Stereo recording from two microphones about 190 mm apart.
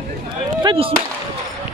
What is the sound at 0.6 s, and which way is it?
Speech, 30° right (ahead or behind).